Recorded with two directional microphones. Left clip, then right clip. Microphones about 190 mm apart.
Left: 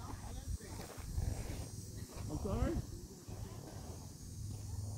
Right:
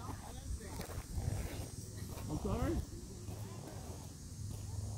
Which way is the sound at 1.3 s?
50° right (ahead or behind).